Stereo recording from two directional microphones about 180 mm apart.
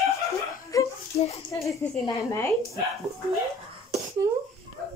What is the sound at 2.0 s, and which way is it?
Speech, 15° left (ahead or behind).